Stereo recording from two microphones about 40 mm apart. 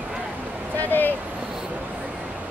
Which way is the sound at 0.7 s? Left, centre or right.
Left.